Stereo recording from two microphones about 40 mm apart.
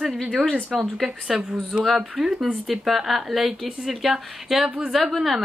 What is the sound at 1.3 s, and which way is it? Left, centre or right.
Speech, right.